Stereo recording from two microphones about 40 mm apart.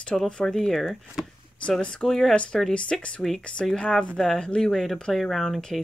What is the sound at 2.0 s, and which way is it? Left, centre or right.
Speech, centre.